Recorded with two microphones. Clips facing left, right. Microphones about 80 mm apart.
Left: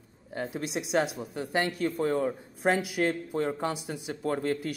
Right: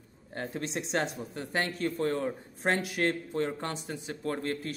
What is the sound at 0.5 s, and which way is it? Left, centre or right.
A man's voice, centre.